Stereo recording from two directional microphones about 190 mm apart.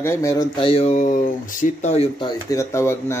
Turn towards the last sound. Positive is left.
turn(degrees=15)  # may be behind; listen again after turning